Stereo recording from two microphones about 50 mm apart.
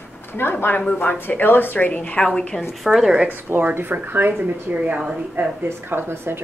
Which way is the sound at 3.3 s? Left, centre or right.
Right.